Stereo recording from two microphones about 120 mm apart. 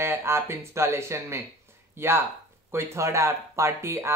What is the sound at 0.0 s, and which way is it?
Speech, 20° right (ahead or behind).